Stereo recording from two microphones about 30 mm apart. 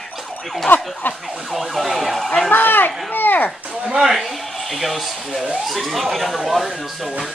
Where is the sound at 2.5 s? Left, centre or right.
Left.